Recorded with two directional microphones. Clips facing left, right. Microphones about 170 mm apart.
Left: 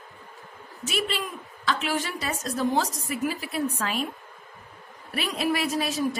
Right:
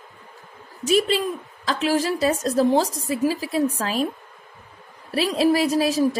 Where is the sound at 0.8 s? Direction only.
35° right (ahead or behind).